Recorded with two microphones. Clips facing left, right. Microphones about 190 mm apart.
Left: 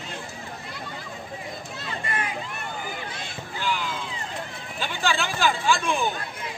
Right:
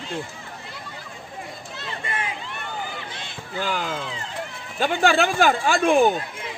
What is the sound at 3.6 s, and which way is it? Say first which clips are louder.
Speech: right 3 dB; 45° right (ahead or behind).